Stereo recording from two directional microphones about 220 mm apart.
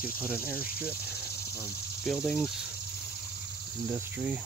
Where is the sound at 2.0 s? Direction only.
Centre (ahead or behind).